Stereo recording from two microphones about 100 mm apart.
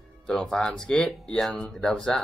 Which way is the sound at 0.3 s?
5° left (ahead or behind).